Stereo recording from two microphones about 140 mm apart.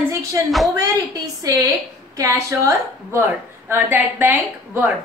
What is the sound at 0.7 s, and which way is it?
A woman's voice, 25° right (ahead or behind).